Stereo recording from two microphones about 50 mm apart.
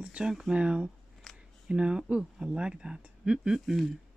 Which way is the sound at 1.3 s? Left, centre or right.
Centre.